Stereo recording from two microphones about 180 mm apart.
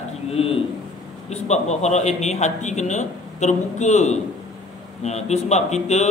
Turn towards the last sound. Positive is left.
turn(degrees=40)  # may be behind; listen again after turning